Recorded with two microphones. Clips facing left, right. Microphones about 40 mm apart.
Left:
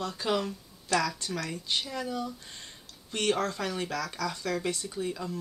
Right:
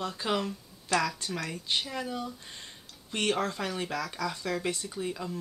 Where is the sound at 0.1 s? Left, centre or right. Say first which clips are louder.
Left 1 dB; centre.